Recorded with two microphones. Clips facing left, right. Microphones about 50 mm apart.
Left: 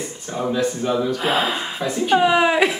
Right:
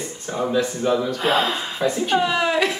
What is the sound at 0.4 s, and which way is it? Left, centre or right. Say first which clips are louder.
Speech: even; centre.